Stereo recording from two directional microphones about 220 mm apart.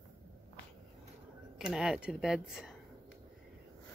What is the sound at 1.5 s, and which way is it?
Speech, centre (ahead or behind).